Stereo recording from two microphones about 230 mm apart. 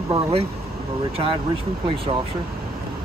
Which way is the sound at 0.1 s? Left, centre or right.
Right.